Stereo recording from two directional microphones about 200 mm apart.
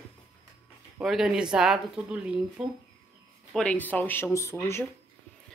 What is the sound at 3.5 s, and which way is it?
Speech, 5° left (ahead or behind).